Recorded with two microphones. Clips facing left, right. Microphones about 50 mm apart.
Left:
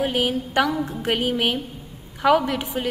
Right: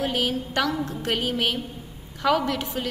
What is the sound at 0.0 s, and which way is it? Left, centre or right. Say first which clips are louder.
A woman's voice: left 3 dB; centre.